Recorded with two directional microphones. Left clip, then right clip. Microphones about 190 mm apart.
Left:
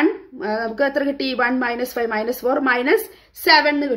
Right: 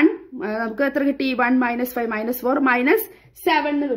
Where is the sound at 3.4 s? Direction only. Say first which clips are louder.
Left 5 dB; 5° right (ahead or behind).